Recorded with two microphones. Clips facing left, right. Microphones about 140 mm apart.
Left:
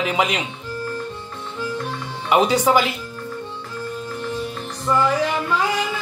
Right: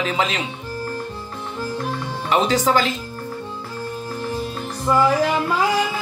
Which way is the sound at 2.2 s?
15° left (ahead or behind).